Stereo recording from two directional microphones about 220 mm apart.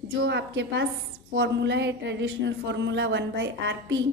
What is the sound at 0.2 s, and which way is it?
Speech, 55° right (ahead or behind).